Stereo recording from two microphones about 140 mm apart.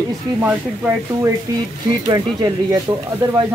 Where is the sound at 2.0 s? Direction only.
25° right (ahead or behind).